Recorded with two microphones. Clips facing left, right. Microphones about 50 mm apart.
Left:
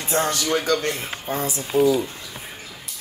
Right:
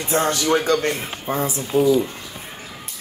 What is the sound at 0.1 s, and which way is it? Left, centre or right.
Speech, right.